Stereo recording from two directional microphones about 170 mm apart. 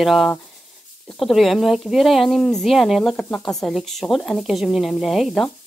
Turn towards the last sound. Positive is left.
turn(degrees=0)  # may be behind; listen again after turning